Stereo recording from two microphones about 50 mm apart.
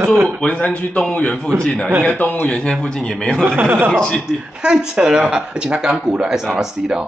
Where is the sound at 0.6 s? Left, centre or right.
Left.